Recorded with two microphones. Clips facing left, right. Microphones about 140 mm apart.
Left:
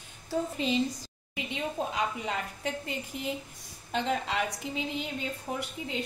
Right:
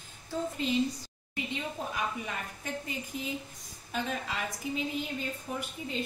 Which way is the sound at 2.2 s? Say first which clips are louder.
Left 5 dB; 75° left (ahead or behind).